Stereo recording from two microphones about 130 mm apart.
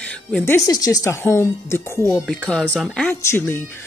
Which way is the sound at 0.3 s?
15° left (ahead or behind).